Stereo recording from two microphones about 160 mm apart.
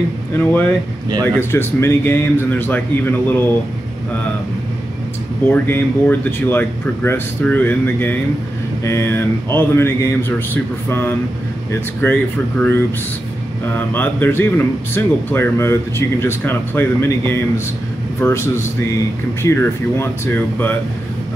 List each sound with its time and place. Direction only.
0.4 s speech: 10° left (ahead or behind)
5.5 s speech: 15° left (ahead or behind)